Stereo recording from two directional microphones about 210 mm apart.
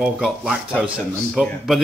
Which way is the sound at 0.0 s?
5° right (ahead or behind).